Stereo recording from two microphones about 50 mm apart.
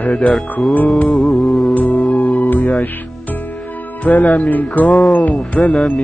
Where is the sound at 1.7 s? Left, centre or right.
Left.